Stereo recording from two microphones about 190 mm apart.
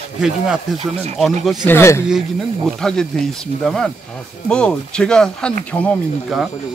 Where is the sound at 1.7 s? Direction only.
15° left (ahead or behind).